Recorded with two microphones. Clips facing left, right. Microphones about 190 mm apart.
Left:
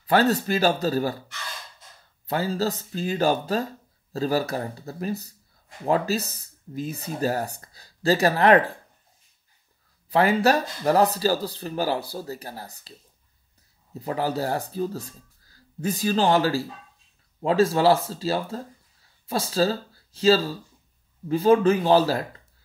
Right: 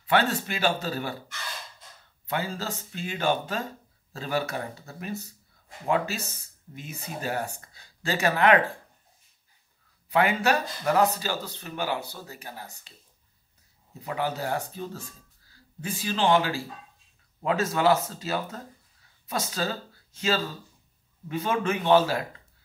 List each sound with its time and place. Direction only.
0.0 s speech: 40° left (ahead or behind)
2.2 s speech: 35° left (ahead or behind)
10.0 s speech: 35° left (ahead or behind)
13.9 s speech: 35° left (ahead or behind)